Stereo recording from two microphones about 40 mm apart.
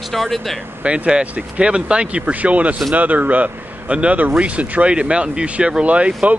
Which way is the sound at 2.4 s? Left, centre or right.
Right.